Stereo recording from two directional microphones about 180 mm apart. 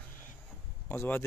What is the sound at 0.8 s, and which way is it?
Speech, 10° left (ahead or behind).